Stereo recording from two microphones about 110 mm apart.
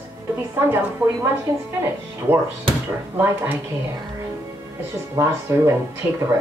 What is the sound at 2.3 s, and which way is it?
Speech, 15° right (ahead or behind).